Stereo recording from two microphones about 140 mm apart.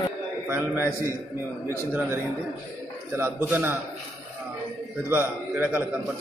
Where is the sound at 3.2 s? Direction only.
15° right (ahead or behind).